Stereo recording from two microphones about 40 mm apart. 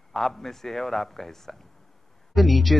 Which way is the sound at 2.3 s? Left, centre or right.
Centre.